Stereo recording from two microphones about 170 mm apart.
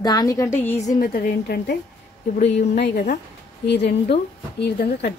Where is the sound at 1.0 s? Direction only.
55° left (ahead or behind).